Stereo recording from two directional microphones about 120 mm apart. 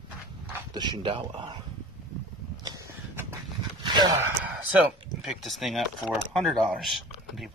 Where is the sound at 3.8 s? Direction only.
40° right (ahead or behind).